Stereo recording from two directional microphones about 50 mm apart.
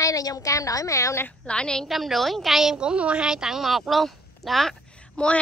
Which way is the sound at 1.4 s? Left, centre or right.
Centre.